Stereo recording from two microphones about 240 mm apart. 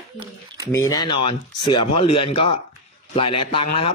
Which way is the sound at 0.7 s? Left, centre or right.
Centre.